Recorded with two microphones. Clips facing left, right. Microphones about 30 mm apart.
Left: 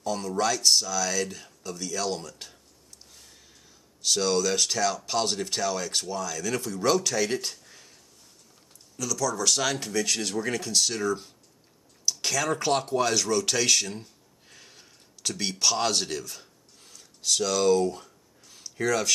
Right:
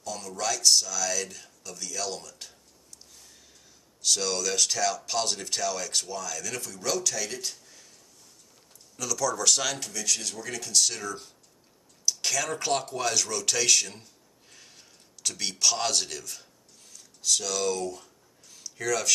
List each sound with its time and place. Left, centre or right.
0.0 s speech: left
4.0 s speech: centre
8.9 s speech: centre
9.8 s speech: centre
10.6 s speech: centre
14.5 s a sound: centre